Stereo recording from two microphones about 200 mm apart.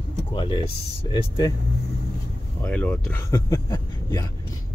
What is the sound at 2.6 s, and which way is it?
Speech, 5° left (ahead or behind).